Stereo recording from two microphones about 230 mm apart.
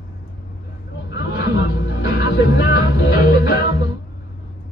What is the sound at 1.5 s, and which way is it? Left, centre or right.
Music, left.